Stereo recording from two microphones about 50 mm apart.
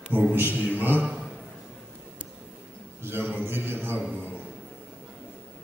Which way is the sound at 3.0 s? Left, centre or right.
Right.